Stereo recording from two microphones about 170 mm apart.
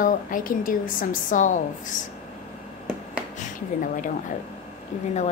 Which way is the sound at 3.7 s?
55° left (ahead or behind).